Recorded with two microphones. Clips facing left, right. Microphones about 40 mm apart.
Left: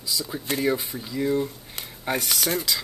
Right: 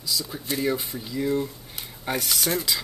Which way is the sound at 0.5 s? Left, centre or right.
Centre.